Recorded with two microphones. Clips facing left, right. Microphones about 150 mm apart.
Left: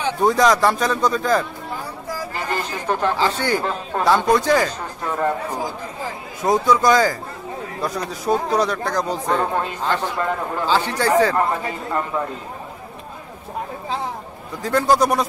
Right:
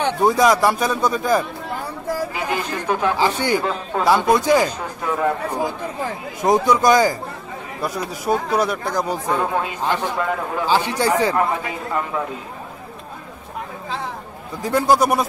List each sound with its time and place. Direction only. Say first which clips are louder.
0.2 s a man's voice: even; 10° right (ahead or behind)
6.4 s speech: right 1 dB; 15° right (ahead or behind)
14.6 s speech: right 1 dB; 10° right (ahead or behind)